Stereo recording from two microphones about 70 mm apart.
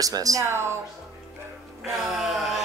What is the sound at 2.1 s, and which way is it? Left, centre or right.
Speech, centre.